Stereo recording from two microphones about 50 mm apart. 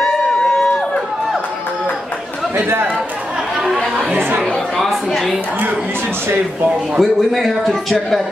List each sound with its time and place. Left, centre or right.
2.5 s speech: right
3.7 s chatter: centre
4.1 s speech: right
4.5 s a woman's voice: centre
7.0 s a man's voice: centre